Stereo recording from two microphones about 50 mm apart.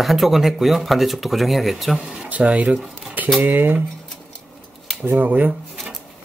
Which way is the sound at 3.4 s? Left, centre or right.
Right.